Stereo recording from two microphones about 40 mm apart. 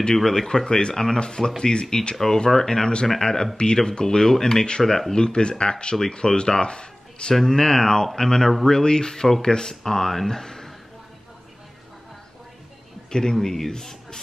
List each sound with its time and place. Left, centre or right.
0.1 s speech: centre
8.5 s speech: centre
8.7 s speech: centre
13.1 s speech: centre